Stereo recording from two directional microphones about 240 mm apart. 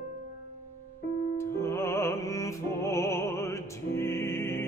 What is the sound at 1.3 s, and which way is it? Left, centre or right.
Music, centre.